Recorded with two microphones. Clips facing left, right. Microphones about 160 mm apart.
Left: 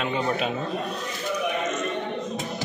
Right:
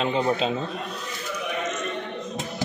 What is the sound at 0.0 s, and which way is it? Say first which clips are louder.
Speech: right 2 dB; 25° right (ahead or behind).